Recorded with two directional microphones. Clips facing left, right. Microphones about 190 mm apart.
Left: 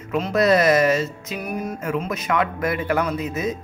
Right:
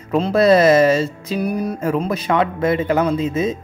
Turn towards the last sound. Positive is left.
turn(degrees=-25)  # may be behind; listen again after turning